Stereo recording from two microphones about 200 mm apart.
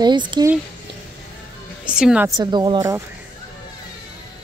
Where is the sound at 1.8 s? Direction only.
5° right (ahead or behind).